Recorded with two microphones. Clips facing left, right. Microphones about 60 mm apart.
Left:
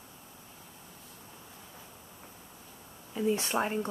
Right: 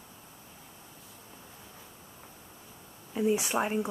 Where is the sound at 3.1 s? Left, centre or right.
Centre.